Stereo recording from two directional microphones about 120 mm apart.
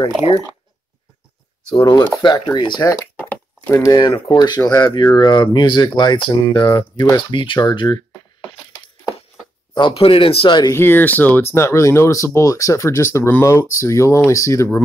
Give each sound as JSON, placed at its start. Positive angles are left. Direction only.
{"t": 1.7, "sound": "speech", "side_deg": 35}
{"t": 3.2, "sound": "a sound", "side_deg": 15}
{"t": 4.0, "sound": "speech", "side_deg": 40}
{"t": 9.8, "sound": "speech", "side_deg": 45}
{"t": 10.7, "sound": "speech", "side_deg": 20}